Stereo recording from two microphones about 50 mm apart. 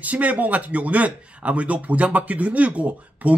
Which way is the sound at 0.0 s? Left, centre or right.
Right.